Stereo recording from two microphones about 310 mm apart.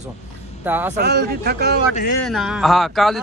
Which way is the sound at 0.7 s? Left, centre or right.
Centre.